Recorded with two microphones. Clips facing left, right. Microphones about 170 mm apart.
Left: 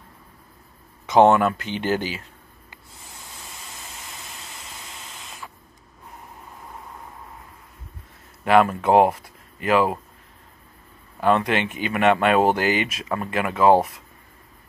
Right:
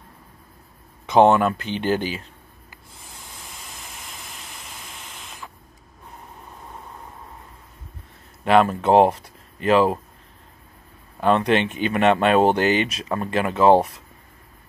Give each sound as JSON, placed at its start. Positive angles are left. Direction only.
{"t": 1.2, "sound": "speech", "side_deg": -20}
{"t": 2.7, "sound": "spray", "side_deg": 20}
{"t": 3.7, "sound": "engine", "side_deg": 20}
{"t": 4.7, "sound": "spray", "side_deg": 20}
{"t": 8.5, "sound": "speech", "side_deg": -20}
{"t": 11.1, "sound": "speech", "side_deg": -20}